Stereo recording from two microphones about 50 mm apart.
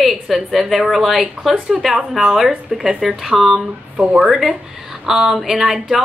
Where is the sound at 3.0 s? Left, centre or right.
Centre.